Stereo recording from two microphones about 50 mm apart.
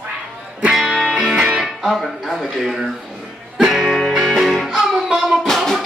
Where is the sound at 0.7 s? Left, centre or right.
Centre.